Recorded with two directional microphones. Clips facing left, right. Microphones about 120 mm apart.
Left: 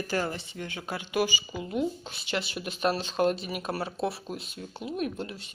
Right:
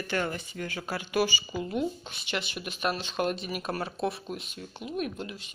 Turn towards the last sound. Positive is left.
turn(degrees=30)  # may be behind; listen again after turning